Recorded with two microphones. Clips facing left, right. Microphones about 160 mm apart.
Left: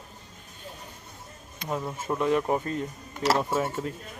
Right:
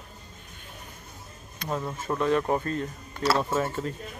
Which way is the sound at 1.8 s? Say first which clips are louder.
Even; 10° left (ahead or behind).